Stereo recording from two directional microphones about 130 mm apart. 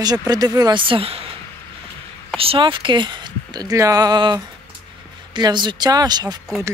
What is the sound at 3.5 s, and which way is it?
Speech, 25° right (ahead or behind).